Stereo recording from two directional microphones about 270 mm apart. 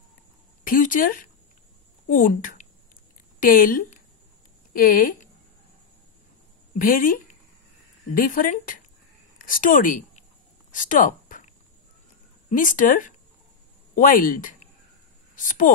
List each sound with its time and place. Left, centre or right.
0.7 s speech: left
6.7 s speech: left
10.7 s a sound: left
12.4 s speech: left